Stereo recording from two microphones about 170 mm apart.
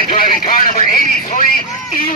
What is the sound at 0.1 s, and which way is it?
Radio, 55° left (ahead or behind).